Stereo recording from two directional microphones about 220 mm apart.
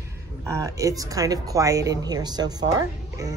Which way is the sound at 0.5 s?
15° right (ahead or behind).